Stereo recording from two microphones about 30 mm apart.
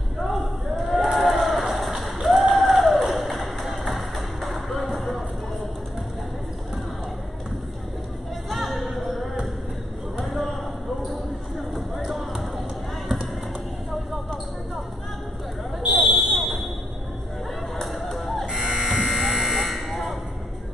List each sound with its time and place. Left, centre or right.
0.2 s a sound: centre
3.9 s music: centre
8.5 s music: centre
10.1 s basketball bounce: centre
11.7 s basketball bounce: centre
15.9 s fire alarm: centre
17.7 s chatter: centre
18.4 s electric shaver: right
18.7 s electric shaver: centre
19.6 s buzzer: centre